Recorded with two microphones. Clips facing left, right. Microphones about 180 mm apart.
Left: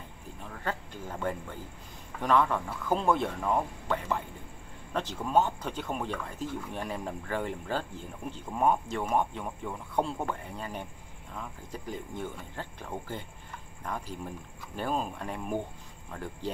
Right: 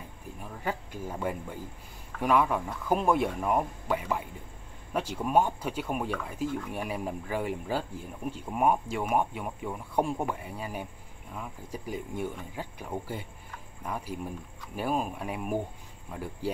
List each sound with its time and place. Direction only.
0.4 s speech: 10° right (ahead or behind)